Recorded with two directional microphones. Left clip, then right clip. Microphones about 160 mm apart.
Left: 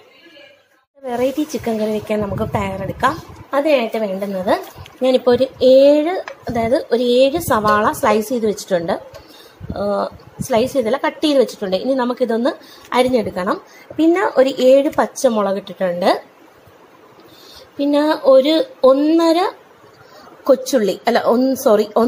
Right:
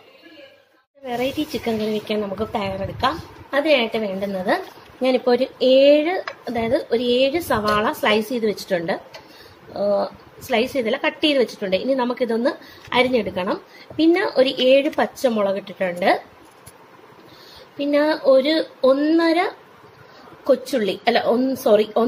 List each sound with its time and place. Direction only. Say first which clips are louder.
1.0 s a woman's voice: left 5 dB; 15° left (ahead or behind)
6.9 s a woman's voice: left 5 dB; 30° left (ahead or behind)
10.9 s a woman's voice: left 2 dB; centre (ahead or behind)
11.3 s a woman's voice: left 4 dB; 25° left (ahead or behind)
17.7 s a woman's voice: left 3 dB; 30° left (ahead or behind)